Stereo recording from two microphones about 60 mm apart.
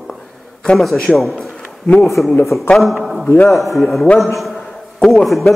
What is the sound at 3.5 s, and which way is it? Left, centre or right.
Speech, centre.